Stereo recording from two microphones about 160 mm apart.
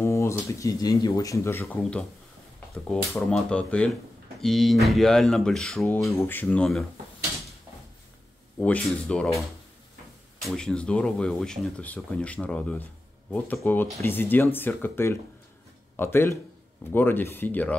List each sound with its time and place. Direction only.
0.0 s speech: 15° left (ahead or behind)
3.3 s speech: 5° left (ahead or behind)
6.1 s speech: 15° left (ahead or behind)
8.5 s speech: 5° left (ahead or behind)
10.4 s speech: 5° left (ahead or behind)